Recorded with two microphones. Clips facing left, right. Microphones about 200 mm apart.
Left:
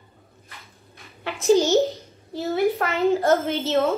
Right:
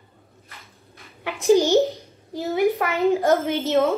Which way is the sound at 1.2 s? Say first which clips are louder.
Right 1 dB; 15° right (ahead or behind).